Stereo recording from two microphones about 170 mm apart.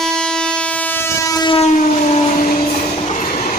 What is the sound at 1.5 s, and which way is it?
Train, 40° left (ahead or behind).